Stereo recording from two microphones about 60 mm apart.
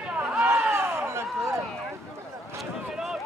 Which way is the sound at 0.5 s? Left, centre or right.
Right.